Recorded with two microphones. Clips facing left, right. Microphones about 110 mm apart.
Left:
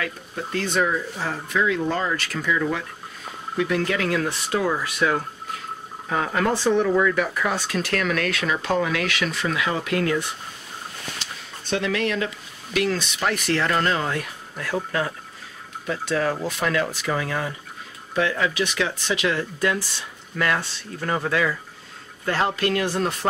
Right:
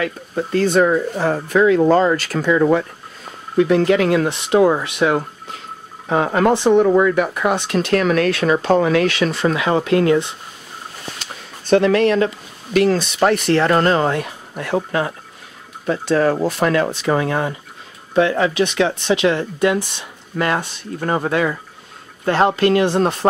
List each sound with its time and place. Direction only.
0.0 s speech: 35° right (ahead or behind)
6.0 s speech: 35° right (ahead or behind)
6.5 s speech: 20° right (ahead or behind)
6.9 s speech: 30° right (ahead or behind)
11.7 s speech: 45° right (ahead or behind); by 23.1 s 25° right (ahead or behind)